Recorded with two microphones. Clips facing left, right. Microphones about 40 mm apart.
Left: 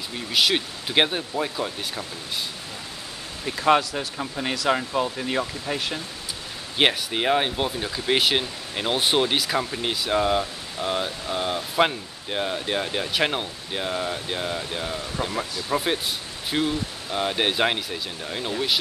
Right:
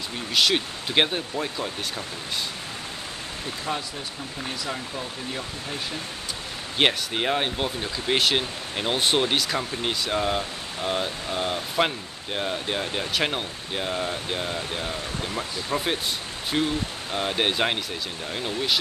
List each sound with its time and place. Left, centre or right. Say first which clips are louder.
0.3 s speech: even; centre
3.6 s speech: left 13 dB; left
6.8 s speech: left 1 dB; centre